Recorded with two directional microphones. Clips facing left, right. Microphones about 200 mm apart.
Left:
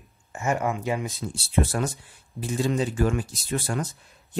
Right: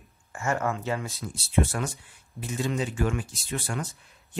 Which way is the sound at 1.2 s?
35° left (ahead or behind).